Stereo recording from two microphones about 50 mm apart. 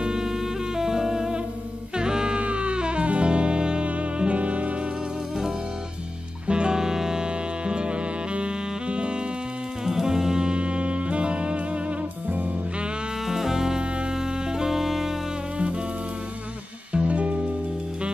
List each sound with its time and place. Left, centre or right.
0.0 s saxophone: centre
0.7 s music: centre; by 4.7 s right
6.4 s music: centre
9.8 s saxophone: centre
13.3 s music: centre
16.9 s music: right